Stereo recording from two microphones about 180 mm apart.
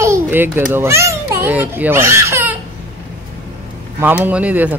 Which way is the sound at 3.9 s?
10° right (ahead or behind).